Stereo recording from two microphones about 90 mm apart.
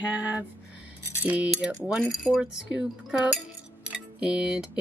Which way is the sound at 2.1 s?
5° right (ahead or behind).